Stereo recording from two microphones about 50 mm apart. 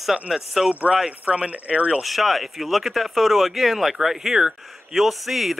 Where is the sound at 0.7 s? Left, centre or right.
Right.